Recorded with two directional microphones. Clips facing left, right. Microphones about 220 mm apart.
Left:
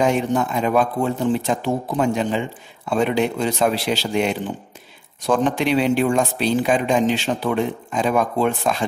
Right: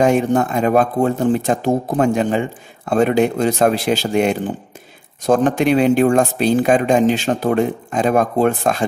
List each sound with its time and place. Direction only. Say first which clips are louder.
0.0 s speech: right 4 dB; 50° right (ahead or behind)